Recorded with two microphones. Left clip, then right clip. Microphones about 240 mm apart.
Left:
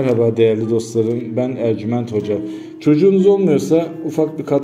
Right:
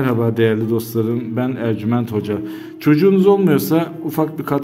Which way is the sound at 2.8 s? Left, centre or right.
Right.